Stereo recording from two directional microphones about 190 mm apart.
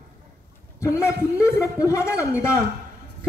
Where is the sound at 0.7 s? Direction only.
15° left (ahead or behind).